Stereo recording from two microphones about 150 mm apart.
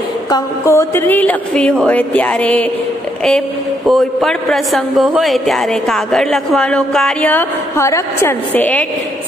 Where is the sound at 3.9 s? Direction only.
Centre (ahead or behind).